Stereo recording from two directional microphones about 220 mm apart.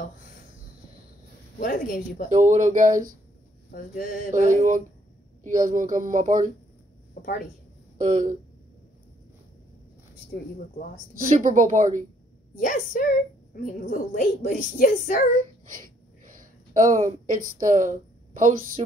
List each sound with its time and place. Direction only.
1.6 s a woman's voice: 40° left (ahead or behind)
2.2 s speech: 35° right (ahead or behind)
3.7 s a woman's voice: 40° left (ahead or behind)
4.3 s speech: 35° right (ahead or behind)
7.2 s speech: 45° left (ahead or behind)
8.0 s speech: 35° right (ahead or behind)
11.3 s speech: 35° right (ahead or behind)
12.5 s a woman's voice: 35° left (ahead or behind)
15.7 s a sound: 40° right (ahead or behind)